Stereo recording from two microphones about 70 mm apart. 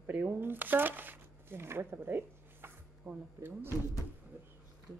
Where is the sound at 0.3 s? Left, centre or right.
Right.